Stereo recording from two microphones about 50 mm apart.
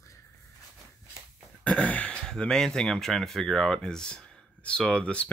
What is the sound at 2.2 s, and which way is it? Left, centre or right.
Speech, centre.